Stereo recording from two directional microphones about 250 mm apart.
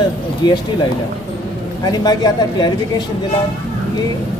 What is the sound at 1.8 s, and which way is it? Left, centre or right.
Speech, centre.